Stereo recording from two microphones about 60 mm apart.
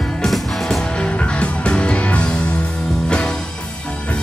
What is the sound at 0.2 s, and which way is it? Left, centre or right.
Music, centre.